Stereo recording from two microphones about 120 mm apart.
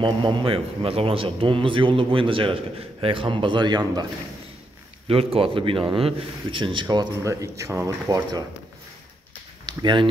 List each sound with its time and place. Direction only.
0.0 s a man's voice: 45° right (ahead or behind)
5.0 s speech: 50° right (ahead or behind); by 8.5 s 30° right (ahead or behind)
9.7 s speech: 40° right (ahead or behind)